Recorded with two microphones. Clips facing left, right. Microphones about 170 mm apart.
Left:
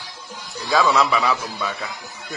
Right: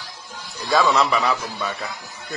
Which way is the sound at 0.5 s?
Centre (ahead or behind).